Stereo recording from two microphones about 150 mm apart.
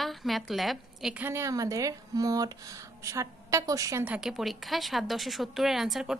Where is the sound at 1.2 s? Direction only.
15° right (ahead or behind).